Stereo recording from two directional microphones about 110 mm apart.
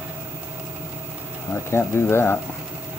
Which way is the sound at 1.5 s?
20° left (ahead or behind).